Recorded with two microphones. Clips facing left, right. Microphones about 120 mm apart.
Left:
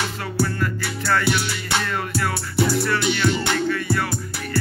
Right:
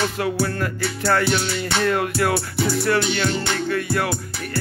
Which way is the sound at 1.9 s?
55° right (ahead or behind).